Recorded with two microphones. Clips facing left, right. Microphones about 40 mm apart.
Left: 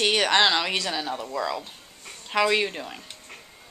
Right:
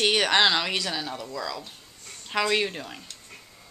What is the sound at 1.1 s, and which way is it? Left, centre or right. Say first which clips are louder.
Speech: left 4 dB; left.